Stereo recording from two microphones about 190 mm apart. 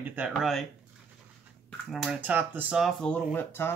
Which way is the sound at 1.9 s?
Centre (ahead or behind).